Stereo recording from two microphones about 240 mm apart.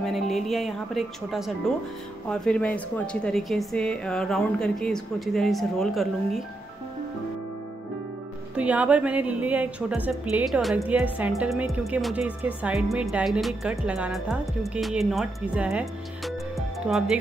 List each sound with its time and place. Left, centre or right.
0.0 s a woman's voice: centre
8.5 s a woman's voice: centre